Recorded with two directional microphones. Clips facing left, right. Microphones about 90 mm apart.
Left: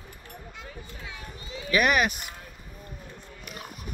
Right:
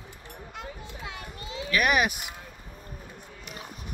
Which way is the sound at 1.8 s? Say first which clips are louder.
Even; 10° right (ahead or behind).